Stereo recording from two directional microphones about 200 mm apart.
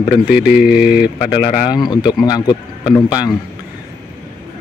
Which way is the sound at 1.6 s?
20° left (ahead or behind).